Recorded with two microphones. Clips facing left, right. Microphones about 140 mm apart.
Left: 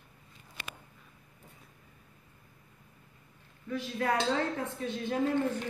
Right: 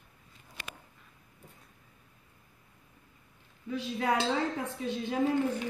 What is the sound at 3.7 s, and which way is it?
Speech, 15° right (ahead or behind).